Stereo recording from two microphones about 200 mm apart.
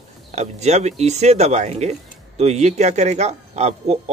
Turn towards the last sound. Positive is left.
turn(degrees=-35)  # may be behind; listen again after turning